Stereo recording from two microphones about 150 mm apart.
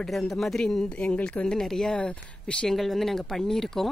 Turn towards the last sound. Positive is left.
turn(degrees=5)  # may be behind; listen again after turning